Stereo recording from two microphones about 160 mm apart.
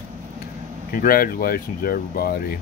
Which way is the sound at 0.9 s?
65° left (ahead or behind).